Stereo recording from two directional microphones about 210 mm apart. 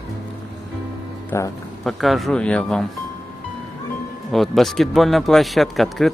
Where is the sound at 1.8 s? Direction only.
Centre (ahead or behind).